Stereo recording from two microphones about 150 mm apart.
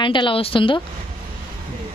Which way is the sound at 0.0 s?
30° left (ahead or behind).